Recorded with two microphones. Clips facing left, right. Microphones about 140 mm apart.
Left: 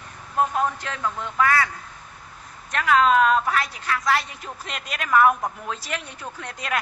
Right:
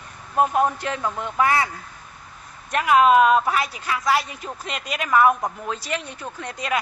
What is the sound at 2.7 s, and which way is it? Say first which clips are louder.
A woman's voice: right 3 dB; 15° right (ahead or behind).